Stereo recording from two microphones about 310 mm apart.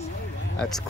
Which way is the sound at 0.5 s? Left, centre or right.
Centre.